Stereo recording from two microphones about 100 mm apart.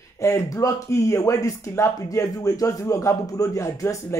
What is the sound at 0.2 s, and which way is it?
A man's voice, 30° left (ahead or behind).